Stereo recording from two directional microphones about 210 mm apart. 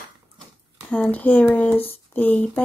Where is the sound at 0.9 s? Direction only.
10° left (ahead or behind).